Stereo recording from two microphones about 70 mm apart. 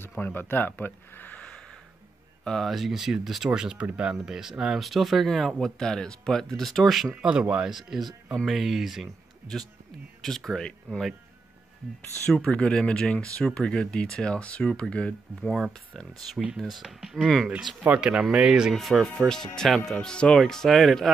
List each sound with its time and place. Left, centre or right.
0.0 s speech: left
2.4 s speech: centre
7.2 s speech: centre
12.3 s speech: centre
16.3 s speech: centre